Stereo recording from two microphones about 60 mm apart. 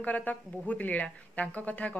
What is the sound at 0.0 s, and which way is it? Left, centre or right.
Speech, left.